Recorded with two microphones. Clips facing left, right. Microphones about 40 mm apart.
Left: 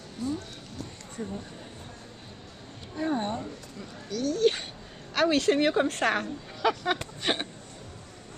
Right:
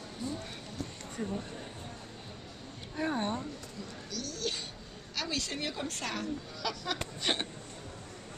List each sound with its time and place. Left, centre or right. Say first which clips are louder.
1.1 s speech: left 1 dB; centre
3.0 s speech: left 3 dB; centre
4.1 s speech: left 13 dB; left
7.3 s speech: left 4 dB; centre